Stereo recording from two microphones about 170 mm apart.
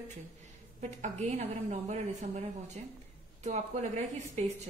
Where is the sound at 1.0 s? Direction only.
40° right (ahead or behind).